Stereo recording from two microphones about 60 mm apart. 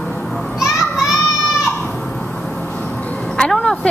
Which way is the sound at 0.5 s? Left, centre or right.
Centre.